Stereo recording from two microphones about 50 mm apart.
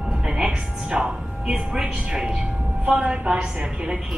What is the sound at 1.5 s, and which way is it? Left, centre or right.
Music, centre.